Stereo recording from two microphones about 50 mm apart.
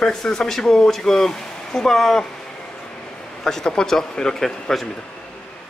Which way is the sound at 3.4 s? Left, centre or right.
Centre.